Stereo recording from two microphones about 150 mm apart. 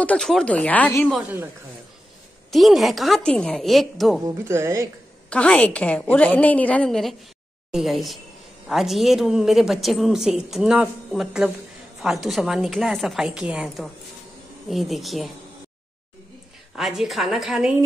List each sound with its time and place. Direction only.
0.0 s a woman's voice: 5° left (ahead or behind)
2.5 s a woman's voice: centre (ahead or behind)
4.2 s speech: 20° right (ahead or behind)
5.3 s a woman's voice: 10° left (ahead or behind)
16.7 s a woman's voice: centre (ahead or behind)